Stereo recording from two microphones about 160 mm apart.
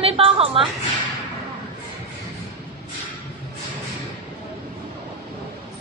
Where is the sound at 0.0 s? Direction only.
35° right (ahead or behind).